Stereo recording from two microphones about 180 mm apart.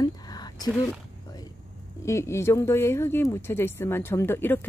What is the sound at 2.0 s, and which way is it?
Speech, 15° left (ahead or behind).